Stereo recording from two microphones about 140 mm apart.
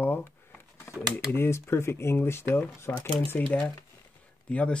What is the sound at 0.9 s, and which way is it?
Typing, 20° left (ahead or behind).